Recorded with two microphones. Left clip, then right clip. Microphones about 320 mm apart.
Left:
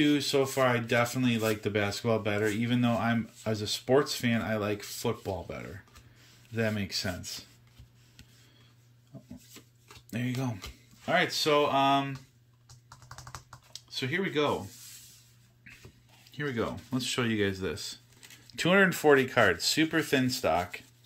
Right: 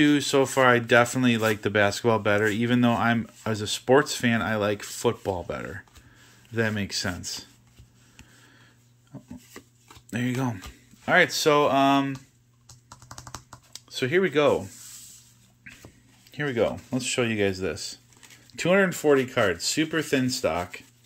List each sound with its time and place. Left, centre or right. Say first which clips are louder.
0.0 s speech: right 5 dB; centre
10.0 s speech: right 6 dB; centre
12.9 s typing: right 4 dB; right
13.8 s speech: right 8 dB; centre
16.3 s speech: right 8 dB; centre